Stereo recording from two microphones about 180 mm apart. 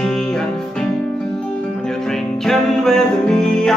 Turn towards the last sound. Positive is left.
turn(degrees=5)  # may be behind; listen again after turning